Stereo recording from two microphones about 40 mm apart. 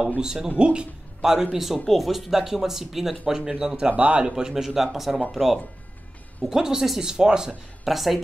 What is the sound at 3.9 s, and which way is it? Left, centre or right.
Speech, right.